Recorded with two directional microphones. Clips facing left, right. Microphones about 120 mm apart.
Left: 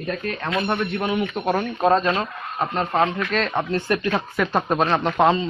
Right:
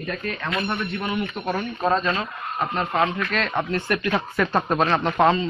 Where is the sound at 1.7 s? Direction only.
40° left (ahead or behind).